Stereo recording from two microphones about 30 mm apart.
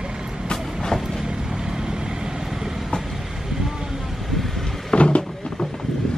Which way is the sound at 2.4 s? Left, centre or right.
Centre.